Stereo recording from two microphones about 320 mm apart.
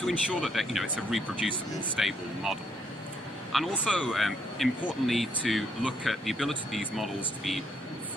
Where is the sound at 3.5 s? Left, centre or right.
Centre.